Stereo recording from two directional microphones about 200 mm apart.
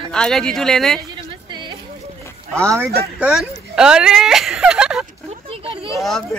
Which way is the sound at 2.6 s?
15° right (ahead or behind).